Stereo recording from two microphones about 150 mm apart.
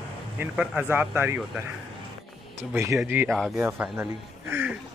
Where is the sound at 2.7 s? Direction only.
20° right (ahead or behind).